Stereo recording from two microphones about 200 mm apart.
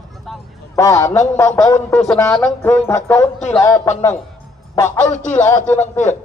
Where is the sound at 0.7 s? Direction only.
15° left (ahead or behind).